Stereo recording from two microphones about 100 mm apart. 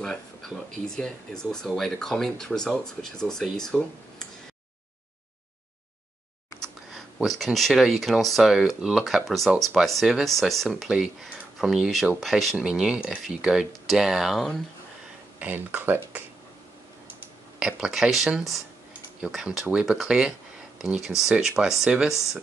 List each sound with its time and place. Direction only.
0.8 s speech: 5° left (ahead or behind)
6.9 s speech: centre (ahead or behind)
15.3 s speech: 15° right (ahead or behind)
17.6 s speech: 5° right (ahead or behind)